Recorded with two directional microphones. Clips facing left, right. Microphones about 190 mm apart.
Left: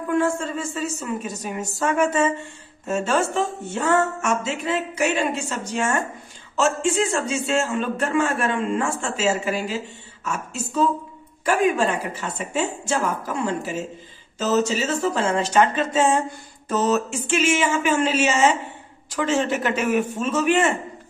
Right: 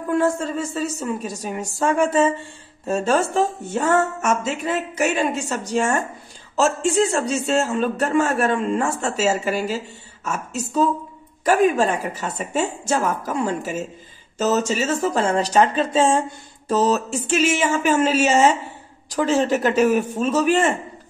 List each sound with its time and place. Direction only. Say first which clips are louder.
0.1 s a man's voice: right 2 dB; 40° right (ahead or behind)